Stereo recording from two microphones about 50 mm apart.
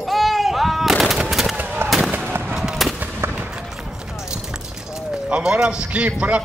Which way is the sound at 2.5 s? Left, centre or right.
Centre.